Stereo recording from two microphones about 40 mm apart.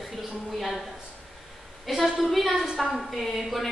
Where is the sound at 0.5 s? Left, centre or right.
Centre.